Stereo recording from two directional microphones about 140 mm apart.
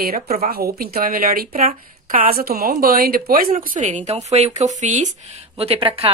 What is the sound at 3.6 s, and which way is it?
Speech, 65° right (ahead or behind).